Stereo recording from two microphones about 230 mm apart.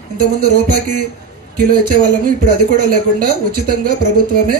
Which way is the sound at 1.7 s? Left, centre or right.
Right.